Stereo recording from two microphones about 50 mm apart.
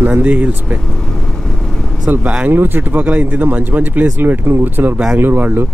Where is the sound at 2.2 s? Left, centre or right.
Right.